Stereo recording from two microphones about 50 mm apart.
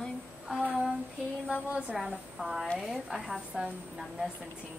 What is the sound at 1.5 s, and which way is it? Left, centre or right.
Speech, right.